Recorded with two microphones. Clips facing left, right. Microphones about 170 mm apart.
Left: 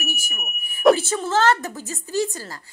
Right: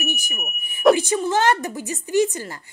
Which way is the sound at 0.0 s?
20° right (ahead or behind).